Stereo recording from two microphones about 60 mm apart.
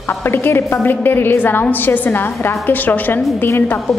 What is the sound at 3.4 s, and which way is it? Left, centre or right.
Speech, left.